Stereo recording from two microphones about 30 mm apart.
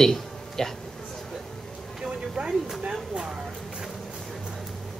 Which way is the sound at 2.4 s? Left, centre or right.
Right.